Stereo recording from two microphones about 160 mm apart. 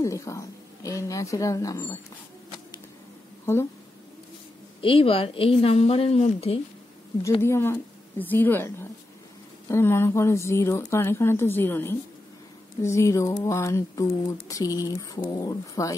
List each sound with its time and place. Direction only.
0.0 s speech: 20° left (ahead or behind)
4.8 s a woman's voice: 35° left (ahead or behind)
7.4 s a woman's voice: 15° left (ahead or behind)